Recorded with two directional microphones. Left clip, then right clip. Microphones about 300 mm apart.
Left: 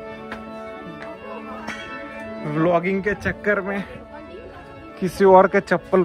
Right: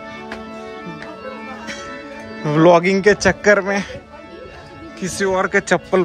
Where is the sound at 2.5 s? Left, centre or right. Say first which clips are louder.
Right 8 dB; centre.